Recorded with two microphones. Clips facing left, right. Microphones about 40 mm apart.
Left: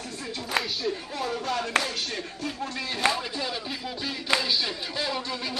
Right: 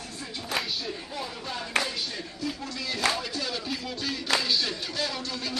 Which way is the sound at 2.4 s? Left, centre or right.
Left.